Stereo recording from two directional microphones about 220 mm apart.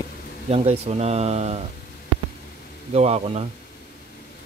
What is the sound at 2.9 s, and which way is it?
Speech, 30° right (ahead or behind).